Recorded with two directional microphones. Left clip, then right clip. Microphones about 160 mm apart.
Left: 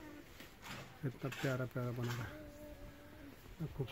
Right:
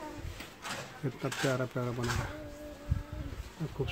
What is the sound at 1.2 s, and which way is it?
Speech, 5° right (ahead or behind).